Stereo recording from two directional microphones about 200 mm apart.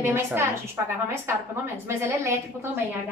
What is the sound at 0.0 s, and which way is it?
Speech, 10° right (ahead or behind).